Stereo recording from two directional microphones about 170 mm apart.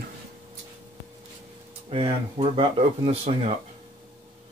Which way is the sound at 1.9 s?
35° right (ahead or behind).